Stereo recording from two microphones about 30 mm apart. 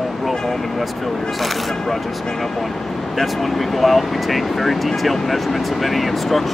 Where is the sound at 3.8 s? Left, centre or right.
Centre.